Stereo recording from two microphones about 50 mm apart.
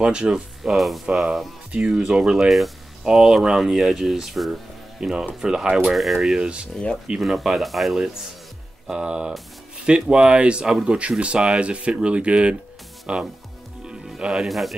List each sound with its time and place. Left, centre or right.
0.0 s speech: centre
0.7 s speech: centre
1.9 s speech: centre
6.4 s speech: right
7.2 s speech: centre
8.8 s speech: centre
14.0 s music: centre
14.5 s speech: centre